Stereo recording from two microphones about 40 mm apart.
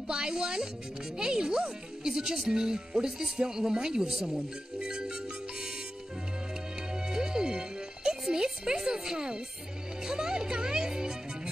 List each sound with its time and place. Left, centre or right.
0.1 s speech: centre
4.7 s music: centre
6.9 s music: centre